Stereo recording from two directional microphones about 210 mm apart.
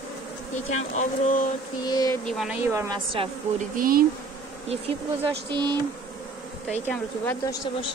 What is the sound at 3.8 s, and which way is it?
Insect, 45° right (ahead or behind).